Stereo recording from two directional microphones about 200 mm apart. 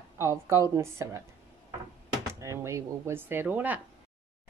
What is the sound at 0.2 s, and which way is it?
Speech, 15° right (ahead or behind).